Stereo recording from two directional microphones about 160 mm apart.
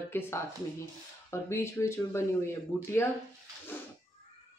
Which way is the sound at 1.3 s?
20° left (ahead or behind).